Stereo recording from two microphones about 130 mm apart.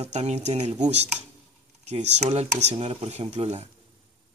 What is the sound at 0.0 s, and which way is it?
A man's voice, 55° right (ahead or behind).